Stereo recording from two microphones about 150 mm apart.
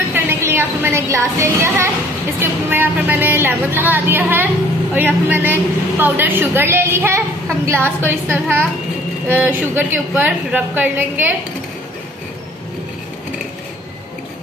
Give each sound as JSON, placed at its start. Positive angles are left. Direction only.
{"t": 0.1, "sound": "a woman's voice", "side_deg": -15}